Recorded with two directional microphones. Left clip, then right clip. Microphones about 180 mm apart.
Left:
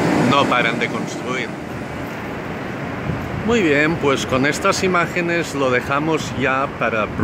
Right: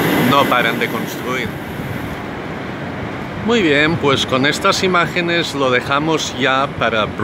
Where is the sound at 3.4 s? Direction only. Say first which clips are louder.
Right 2 dB; centre (ahead or behind).